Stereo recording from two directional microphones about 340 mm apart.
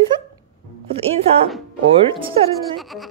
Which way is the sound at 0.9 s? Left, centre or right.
Centre.